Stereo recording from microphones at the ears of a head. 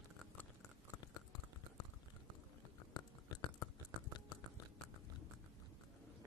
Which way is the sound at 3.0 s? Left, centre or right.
Left.